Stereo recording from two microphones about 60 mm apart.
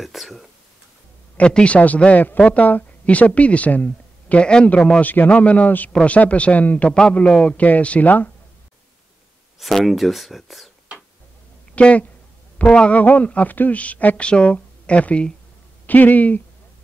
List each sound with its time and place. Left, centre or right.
0.0 s speech: centre
1.3 s a woman's voice: centre
5.0 s speech: left
6.9 s a man's voice: centre
7.5 s speech: left
9.6 s speech: centre
11.7 s speech: left